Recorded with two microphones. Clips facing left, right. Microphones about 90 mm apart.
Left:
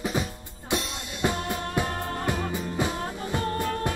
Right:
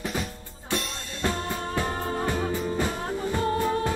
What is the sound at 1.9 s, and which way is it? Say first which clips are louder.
Music: right 2 dB; 5° right (ahead or behind).